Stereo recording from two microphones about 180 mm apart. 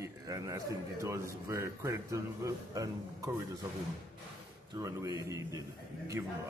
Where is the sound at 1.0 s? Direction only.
15° right (ahead or behind).